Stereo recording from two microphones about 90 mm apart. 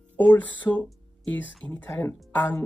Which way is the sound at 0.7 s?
10° left (ahead or behind).